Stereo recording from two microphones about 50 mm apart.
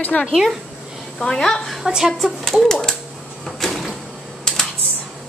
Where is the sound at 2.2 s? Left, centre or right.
Centre.